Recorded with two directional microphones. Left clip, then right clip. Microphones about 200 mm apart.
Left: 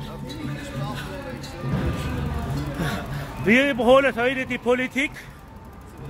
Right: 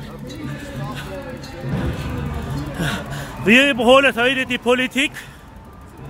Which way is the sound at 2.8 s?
15° right (ahead or behind).